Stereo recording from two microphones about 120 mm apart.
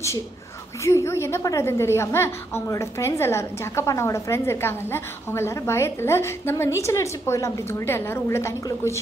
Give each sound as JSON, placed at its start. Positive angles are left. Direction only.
{"t": 0.8, "sound": "a woman's voice", "side_deg": 25}